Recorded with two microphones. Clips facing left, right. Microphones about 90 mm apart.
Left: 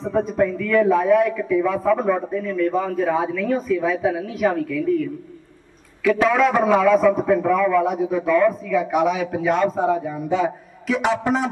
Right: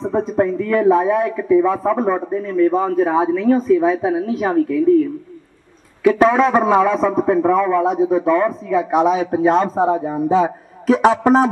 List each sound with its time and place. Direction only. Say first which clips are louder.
0.0 s a man's voice: right 2 dB; 30° right (ahead or behind)
6.0 s a man's voice: right 4 dB; 30° right (ahead or behind)